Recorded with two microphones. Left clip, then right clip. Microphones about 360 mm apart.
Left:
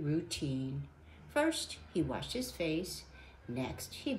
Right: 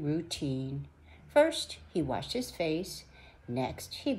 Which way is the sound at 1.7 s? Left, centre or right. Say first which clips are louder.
Right 3 dB; right.